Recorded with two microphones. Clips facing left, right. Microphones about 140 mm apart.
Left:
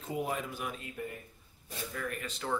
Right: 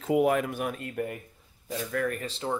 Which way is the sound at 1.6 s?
90° right.